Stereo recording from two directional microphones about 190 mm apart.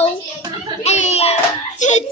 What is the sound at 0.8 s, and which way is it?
Hands, 35° left (ahead or behind).